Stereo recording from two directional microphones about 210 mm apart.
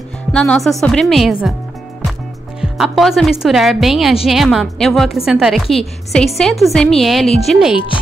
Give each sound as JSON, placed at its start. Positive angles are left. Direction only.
{"t": 0.3, "sound": "a woman's voice", "side_deg": 5}
{"t": 2.6, "sound": "a woman's voice", "side_deg": 0}